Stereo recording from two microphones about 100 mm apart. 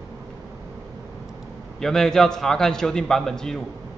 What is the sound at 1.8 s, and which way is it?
A man's voice, 5° left (ahead or behind).